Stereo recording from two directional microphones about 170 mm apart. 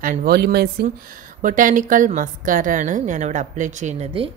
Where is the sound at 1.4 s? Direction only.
50° right (ahead or behind).